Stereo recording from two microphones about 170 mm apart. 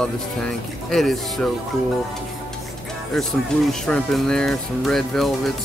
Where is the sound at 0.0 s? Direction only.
5° left (ahead or behind).